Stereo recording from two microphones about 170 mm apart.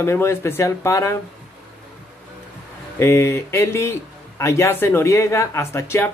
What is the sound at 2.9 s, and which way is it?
Speech, 15° left (ahead or behind).